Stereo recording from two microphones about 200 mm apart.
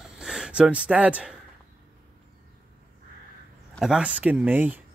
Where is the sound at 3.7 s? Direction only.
Centre (ahead or behind).